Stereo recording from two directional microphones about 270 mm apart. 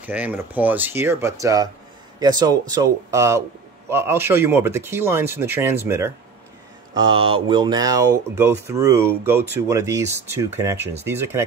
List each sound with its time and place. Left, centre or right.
0.0 s speech: centre